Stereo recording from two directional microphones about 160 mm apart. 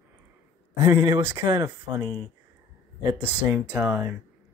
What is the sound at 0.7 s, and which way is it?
Speech, 20° right (ahead or behind).